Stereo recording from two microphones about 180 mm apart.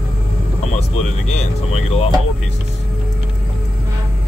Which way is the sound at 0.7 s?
35° left (ahead or behind).